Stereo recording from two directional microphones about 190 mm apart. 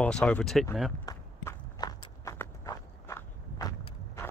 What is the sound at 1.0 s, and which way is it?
Walk, 15° left (ahead or behind).